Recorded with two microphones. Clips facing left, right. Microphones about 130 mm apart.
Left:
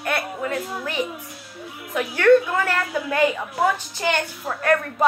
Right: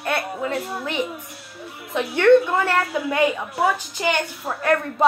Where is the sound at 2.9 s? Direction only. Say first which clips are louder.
Even; 5° right (ahead or behind).